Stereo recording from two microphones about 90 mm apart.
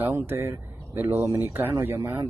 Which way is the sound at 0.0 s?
25° right (ahead or behind).